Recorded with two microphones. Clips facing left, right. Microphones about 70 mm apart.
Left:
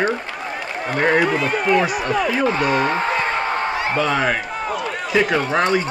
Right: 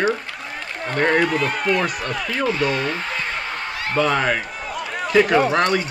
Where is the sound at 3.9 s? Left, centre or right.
Centre.